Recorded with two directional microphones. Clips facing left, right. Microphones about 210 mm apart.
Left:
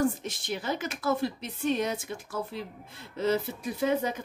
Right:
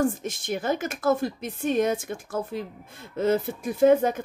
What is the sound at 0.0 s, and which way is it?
A woman's voice, 50° right (ahead or behind).